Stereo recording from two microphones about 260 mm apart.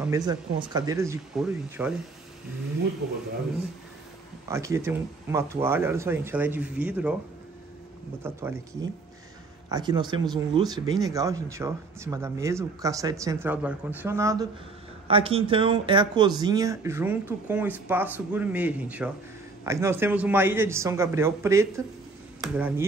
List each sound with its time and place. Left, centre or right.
0.0 s speech: centre
4.5 s speech: centre
8.2 s speech: centre
9.7 s speech: centre